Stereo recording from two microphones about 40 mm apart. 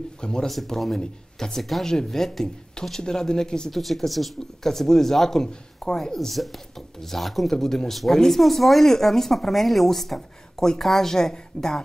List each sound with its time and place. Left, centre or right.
0.2 s speech: centre
0.7 s speech: centre
1.6 s speech: centre
3.7 s speech: centre
6.1 s speech: centre